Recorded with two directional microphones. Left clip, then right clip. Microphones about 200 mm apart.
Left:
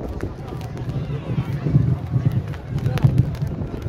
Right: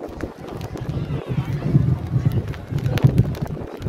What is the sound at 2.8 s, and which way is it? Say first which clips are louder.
Run: right 2 dB; 40° left (ahead or behind).